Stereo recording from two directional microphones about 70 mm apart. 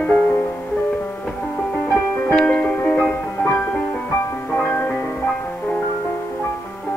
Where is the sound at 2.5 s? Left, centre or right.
Left.